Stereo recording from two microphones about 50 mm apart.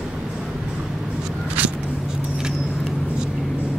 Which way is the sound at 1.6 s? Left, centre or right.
Right.